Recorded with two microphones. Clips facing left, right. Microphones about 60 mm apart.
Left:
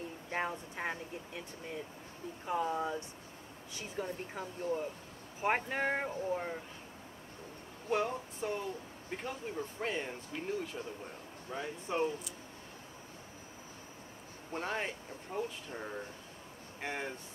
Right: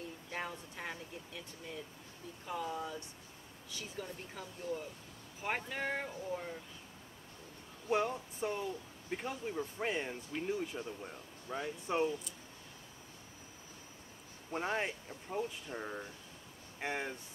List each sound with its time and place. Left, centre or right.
0.3 s speech: left
8.4 s speech: centre
11.9 s speech: centre
14.5 s speech: centre